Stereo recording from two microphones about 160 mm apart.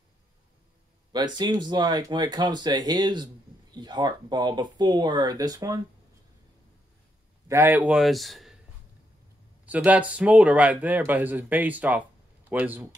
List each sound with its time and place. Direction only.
1.1 s speech: 25° right (ahead or behind)
7.4 s a man's voice: 15° right (ahead or behind); by 8.5 s centre (ahead or behind)
9.7 s a man's voice: 10° right (ahead or behind)